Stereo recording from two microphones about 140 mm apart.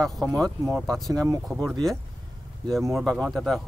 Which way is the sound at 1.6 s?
5° left (ahead or behind).